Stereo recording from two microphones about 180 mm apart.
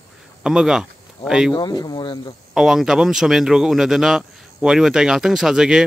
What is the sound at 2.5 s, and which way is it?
Speech, 5° right (ahead or behind).